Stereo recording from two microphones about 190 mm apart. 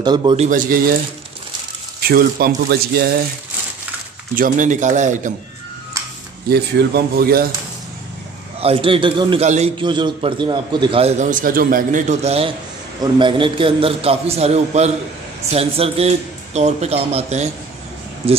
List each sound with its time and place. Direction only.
0.0 s a man's voice: 25° right (ahead or behind)
0.4 s speech: 45° right (ahead or behind)
2.0 s speech: 50° right (ahead or behind)
4.4 s a man's voice: 40° right (ahead or behind)
6.5 s speech: 60° right (ahead or behind)
8.5 s a man's voice: 30° right (ahead or behind)